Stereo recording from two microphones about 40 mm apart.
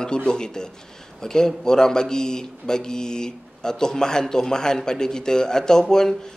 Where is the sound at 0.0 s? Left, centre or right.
Left.